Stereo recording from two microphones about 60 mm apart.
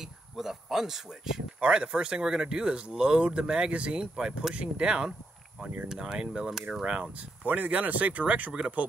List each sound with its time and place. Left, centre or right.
0.0 s speech: centre
7.4 s speech: right